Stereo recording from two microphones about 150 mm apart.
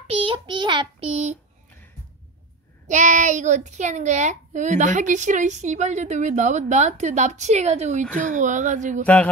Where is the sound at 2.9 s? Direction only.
55° right (ahead or behind).